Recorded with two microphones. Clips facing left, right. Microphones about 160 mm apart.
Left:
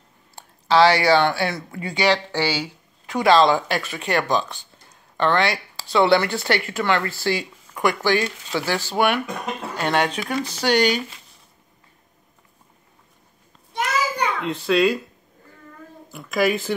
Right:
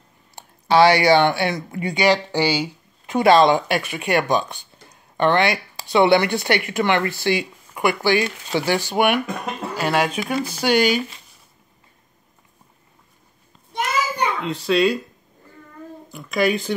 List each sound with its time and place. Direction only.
0.4 s speech: 15° right (ahead or behind)
14.4 s speech: centre (ahead or behind)
16.1 s speech: centre (ahead or behind)